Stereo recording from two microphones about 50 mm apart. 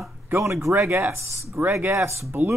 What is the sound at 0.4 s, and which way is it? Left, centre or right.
Speech, right.